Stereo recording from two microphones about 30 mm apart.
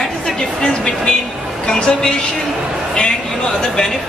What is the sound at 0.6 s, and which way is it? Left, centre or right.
A woman's voice, left.